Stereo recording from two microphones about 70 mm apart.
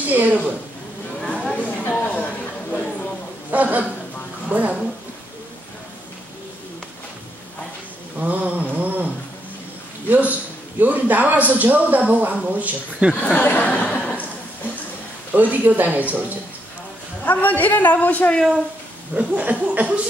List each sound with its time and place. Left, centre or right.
0.1 s speech: right
1.2 s a sound: centre
3.5 s a man's voice: right
8.2 s a sound: right
10.8 s speech: right
13.1 s speech: left
13.9 s a sound: left
15.3 s speech: right
17.2 s a man's voice: left
19.1 s speech: right